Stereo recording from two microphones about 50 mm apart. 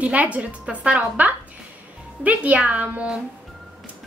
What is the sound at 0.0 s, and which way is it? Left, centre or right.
A woman's voice, right.